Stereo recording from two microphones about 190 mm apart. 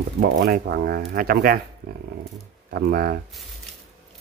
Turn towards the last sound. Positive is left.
turn(degrees=-50)  # may be behind; listen again after turning